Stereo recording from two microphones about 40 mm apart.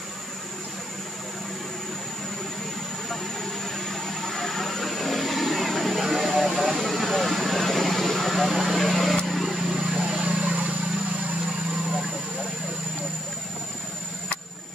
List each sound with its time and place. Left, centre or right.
3.6 s a sound: centre
6.8 s vehicle: centre
9.5 s vehicle: centre
9.9 s vehicle: right